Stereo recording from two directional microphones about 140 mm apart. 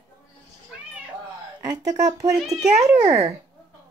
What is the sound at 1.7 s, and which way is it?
Speech, 25° right (ahead or behind).